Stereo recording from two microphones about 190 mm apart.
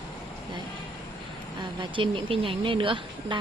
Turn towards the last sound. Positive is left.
turn(degrees=-25)  # may be behind; listen again after turning